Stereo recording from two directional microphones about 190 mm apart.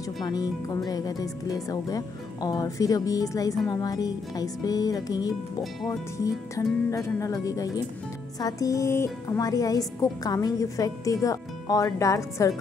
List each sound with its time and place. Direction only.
0.2 s speech: 20° left (ahead or behind)